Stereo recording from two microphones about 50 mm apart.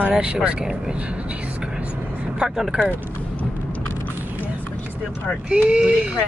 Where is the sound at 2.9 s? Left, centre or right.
Left.